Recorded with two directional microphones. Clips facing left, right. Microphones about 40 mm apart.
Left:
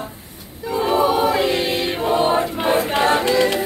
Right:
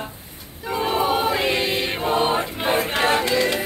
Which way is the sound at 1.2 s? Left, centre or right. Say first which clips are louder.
Left 4 dB; centre.